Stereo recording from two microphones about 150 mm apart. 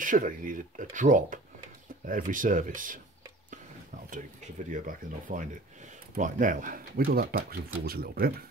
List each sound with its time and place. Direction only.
0.0 s speech: 60° right (ahead or behind)
4.6 s speech: 60° right (ahead or behind); by 8.3 s 90° right